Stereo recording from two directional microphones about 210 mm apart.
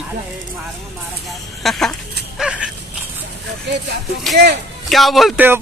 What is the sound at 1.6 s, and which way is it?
Speech, centre (ahead or behind).